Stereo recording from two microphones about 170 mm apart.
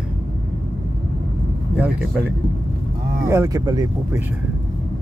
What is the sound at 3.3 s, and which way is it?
Speech, 20° right (ahead or behind).